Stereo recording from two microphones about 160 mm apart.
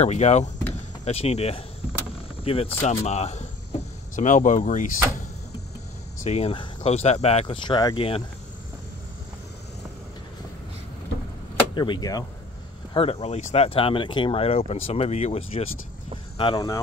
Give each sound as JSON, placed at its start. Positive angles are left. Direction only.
{"t": 0.0, "sound": "speech", "side_deg": 45}
{"t": 6.2, "sound": "speech", "side_deg": 40}
{"t": 11.7, "sound": "speech", "side_deg": 30}
{"t": 12.9, "sound": "speech", "side_deg": 35}
{"t": 16.3, "sound": "speech", "side_deg": 25}